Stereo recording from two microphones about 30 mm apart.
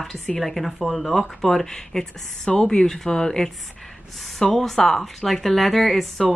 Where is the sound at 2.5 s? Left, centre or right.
Left.